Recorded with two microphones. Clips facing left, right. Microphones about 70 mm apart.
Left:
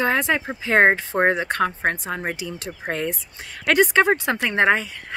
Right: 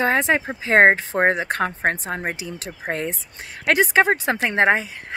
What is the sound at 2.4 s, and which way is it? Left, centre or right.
Speech, right.